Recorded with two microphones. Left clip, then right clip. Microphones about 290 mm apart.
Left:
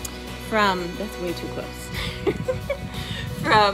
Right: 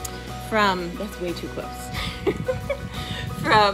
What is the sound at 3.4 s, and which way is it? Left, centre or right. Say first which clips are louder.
Music: even; centre.